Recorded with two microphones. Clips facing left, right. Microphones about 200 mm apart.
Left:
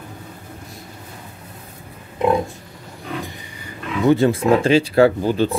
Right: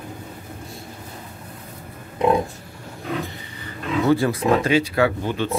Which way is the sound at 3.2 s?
15° left (ahead or behind).